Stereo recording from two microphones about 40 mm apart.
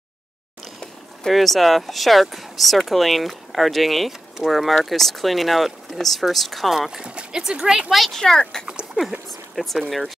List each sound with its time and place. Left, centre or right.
1.3 s speech: centre
7.3 s speech: centre
7.9 s speech: centre
8.4 s speech: centre
8.6 s speech: right
9.3 s speech: centre